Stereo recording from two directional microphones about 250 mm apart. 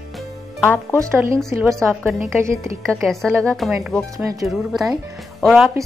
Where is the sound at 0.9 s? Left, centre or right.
Centre.